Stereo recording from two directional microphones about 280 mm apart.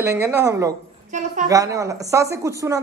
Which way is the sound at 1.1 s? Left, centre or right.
Right.